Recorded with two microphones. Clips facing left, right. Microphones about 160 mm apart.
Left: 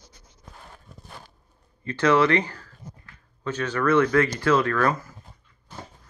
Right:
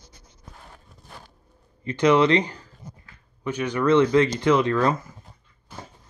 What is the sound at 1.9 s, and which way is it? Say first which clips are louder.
Speech: right 2 dB; 15° right (ahead or behind).